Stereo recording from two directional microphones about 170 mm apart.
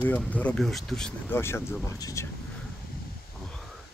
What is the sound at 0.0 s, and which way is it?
Speech, 10° left (ahead or behind).